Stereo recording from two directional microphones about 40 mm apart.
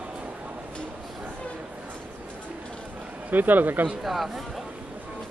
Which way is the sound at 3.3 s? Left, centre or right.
Right.